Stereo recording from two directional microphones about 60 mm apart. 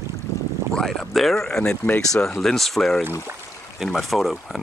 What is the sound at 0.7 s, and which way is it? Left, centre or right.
Speech, centre.